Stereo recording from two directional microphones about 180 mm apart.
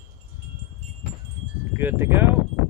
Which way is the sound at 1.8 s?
10° right (ahead or behind).